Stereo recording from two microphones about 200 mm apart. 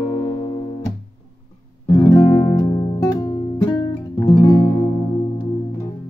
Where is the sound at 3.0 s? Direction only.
20° left (ahead or behind).